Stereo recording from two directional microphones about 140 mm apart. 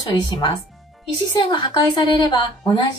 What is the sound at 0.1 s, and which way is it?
A woman's voice, 35° left (ahead or behind).